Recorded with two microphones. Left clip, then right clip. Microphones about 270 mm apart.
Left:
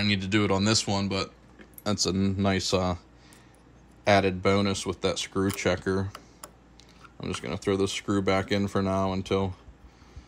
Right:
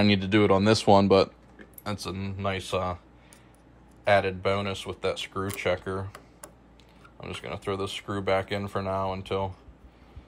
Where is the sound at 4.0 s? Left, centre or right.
Centre.